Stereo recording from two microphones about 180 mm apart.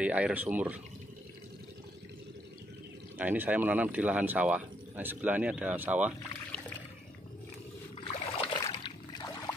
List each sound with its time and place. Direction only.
0.0 s speech: 10° right (ahead or behind)
3.2 s speech: 10° right (ahead or behind)
8.0 s boat: 30° left (ahead or behind)